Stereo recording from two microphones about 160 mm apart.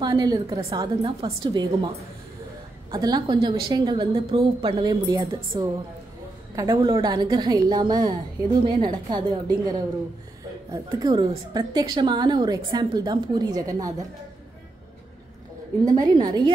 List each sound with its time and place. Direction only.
0.0 s a woman's voice: 25° right (ahead or behind)
0.6 s a woman's voice: 35° right (ahead or behind)
2.9 s a woman's voice: 25° right (ahead or behind)
16.0 s a woman's voice: 25° right (ahead or behind)